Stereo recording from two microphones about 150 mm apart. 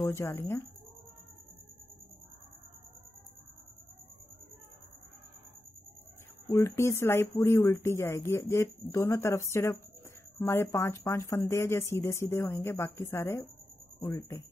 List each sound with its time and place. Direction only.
0.0 s speech: 15° left (ahead or behind)
6.4 s speech: 20° left (ahead or behind)